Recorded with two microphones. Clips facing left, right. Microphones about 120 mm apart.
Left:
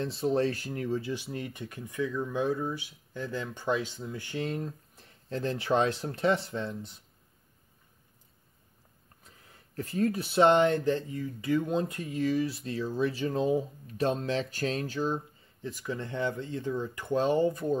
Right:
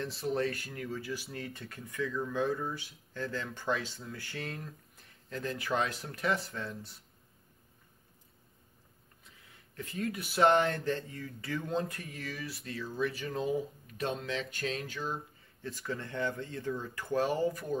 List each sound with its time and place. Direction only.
0.0 s speech: 25° left (ahead or behind)
9.2 s speech: 40° left (ahead or behind)
15.6 s speech: 15° left (ahead or behind)